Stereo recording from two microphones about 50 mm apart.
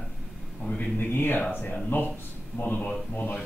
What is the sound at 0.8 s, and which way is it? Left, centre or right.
Speech, left.